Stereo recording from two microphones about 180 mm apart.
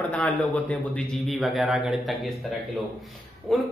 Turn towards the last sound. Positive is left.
turn(degrees=0)  # may be behind; listen again after turning